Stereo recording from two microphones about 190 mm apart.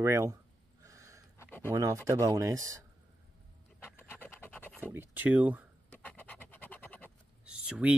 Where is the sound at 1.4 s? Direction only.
10° left (ahead or behind).